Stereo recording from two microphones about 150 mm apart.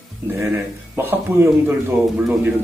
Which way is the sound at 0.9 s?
15° right (ahead or behind).